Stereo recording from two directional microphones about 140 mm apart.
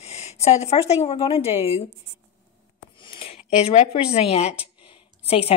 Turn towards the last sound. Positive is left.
turn(degrees=45)  # may be behind; listen again after turning